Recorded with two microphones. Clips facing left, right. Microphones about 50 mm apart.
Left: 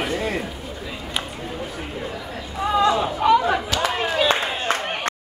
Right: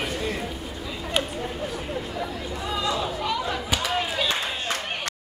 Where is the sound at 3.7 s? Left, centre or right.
Left.